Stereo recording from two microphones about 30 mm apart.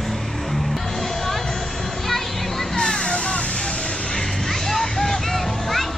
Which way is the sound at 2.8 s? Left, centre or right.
Left.